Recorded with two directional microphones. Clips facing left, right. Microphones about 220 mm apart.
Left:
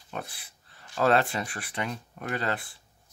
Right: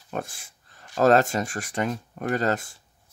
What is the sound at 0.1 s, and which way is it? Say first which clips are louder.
Speech: right 6 dB; 45° right (ahead or behind).